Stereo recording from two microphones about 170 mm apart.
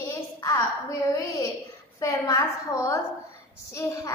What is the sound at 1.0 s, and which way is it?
A woman's voice, 20° left (ahead or behind).